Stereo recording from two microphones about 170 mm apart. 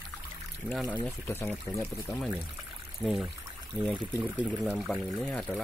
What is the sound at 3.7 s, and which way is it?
Speech, 25° right (ahead or behind).